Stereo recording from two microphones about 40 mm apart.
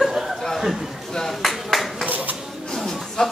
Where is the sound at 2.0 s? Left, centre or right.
Right.